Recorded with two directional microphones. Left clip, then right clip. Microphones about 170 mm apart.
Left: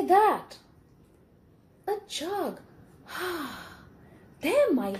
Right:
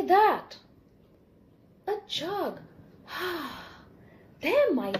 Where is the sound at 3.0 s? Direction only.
20° left (ahead or behind).